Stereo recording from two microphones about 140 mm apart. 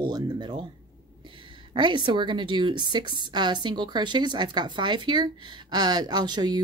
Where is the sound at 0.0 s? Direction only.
30° right (ahead or behind).